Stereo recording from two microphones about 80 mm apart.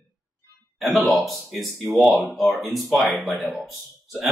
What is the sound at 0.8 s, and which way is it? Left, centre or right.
Speech, centre.